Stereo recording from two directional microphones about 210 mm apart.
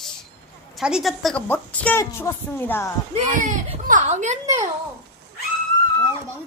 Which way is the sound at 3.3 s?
40° right (ahead or behind).